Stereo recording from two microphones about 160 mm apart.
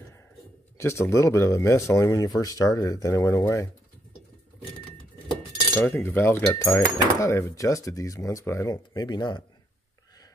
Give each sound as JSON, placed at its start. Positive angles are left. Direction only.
{"t": 0.7, "sound": "speech", "side_deg": 15}
{"t": 5.8, "sound": "speech", "side_deg": 10}